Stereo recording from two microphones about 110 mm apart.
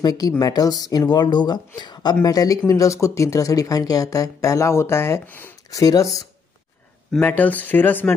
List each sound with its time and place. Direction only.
0.0 s speech: 35° left (ahead or behind); by 5.5 s 20° left (ahead or behind)
5.7 s speech: 30° left (ahead or behind)
7.2 s speech: 15° left (ahead or behind)